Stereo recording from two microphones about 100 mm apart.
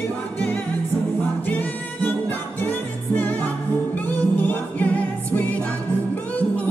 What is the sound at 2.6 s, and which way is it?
Music, 15° left (ahead or behind).